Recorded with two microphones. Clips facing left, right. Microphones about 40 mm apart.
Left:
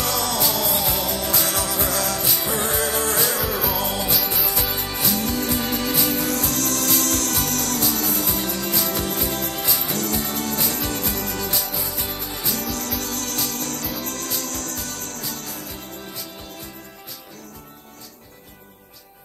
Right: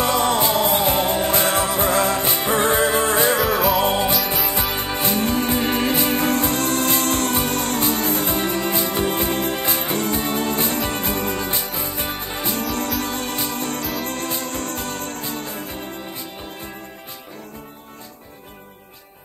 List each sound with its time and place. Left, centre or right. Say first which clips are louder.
0.0 s music: right 5 dB; right
3.4 s music: right 6 dB; centre
3.8 s music: right 5 dB; right